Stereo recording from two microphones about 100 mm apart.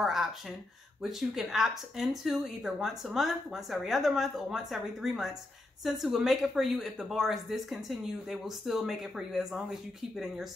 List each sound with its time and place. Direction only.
0.0 s a woman's voice: 5° right (ahead or behind)